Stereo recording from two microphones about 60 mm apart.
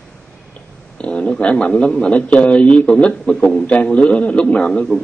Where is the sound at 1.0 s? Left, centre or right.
Centre.